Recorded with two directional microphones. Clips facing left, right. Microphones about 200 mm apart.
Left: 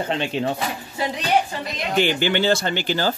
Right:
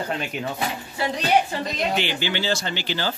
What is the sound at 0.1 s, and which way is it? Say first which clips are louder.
Speech: left 5 dB; 30° left (ahead or behind).